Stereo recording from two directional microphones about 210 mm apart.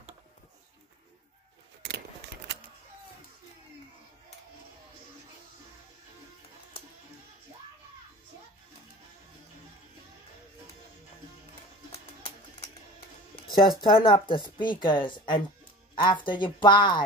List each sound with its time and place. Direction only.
13.6 s speech: 20° left (ahead or behind)